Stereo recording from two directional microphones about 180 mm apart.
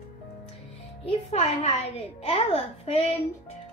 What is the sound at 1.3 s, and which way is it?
A child's voice, 35° left (ahead or behind).